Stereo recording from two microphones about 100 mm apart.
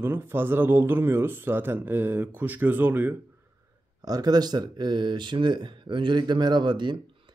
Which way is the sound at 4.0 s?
40° right (ahead or behind).